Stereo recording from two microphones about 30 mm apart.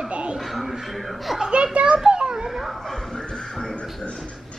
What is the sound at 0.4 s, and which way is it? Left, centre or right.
Speech, centre.